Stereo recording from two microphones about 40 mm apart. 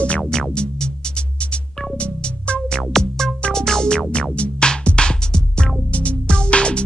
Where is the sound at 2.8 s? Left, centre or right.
Centre.